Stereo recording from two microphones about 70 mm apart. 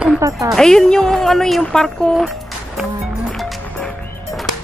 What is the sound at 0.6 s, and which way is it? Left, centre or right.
Speech, centre.